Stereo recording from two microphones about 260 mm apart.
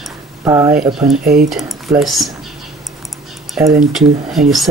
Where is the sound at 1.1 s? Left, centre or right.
Right.